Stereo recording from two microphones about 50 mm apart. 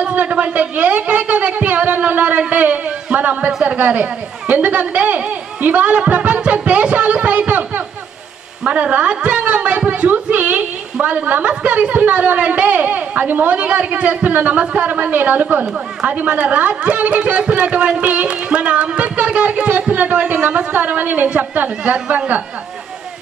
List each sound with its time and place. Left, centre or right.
0.0 s a man's voice: right
14.9 s a man's voice: right
20.8 s a man's voice: right